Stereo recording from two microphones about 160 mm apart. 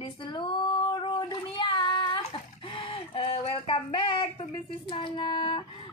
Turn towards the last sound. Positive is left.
turn(degrees=30)  # may be behind; listen again after turning